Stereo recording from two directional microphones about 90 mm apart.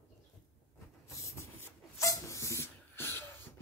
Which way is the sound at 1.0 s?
35° left (ahead or behind).